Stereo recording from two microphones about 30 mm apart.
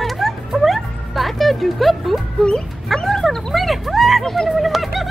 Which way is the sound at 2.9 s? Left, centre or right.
Centre.